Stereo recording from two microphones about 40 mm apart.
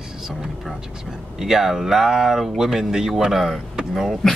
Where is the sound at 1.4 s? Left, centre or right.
Centre.